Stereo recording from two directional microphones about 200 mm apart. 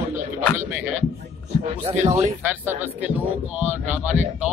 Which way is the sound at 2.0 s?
30° right (ahead or behind).